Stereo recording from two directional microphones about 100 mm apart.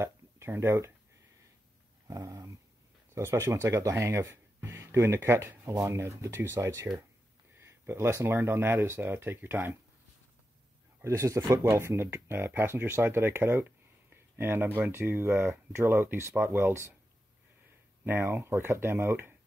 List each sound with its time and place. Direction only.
0.0 s a sound: 25° right (ahead or behind)
2.0 s dog: 35° right (ahead or behind)
3.2 s speech: 30° right (ahead or behind)
11.0 s speech: 30° right (ahead or behind)
18.0 s speech: 25° right (ahead or behind)